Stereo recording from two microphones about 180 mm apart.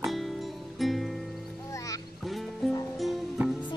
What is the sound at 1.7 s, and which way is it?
Music, 20° left (ahead or behind).